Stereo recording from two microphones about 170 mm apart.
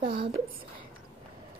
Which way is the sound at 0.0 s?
30° right (ahead or behind).